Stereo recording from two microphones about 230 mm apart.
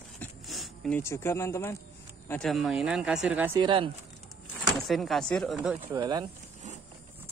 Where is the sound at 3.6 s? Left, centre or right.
Right.